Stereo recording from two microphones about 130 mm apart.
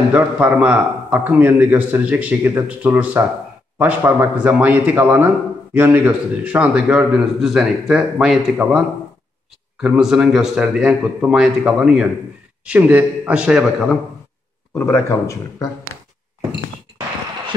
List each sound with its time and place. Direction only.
0.1 s a man's voice: 10° right (ahead or behind)
14.7 s a man's voice: 15° left (ahead or behind)